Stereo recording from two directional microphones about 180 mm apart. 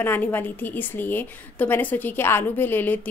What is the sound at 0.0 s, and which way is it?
A woman's voice, 10° left (ahead or behind).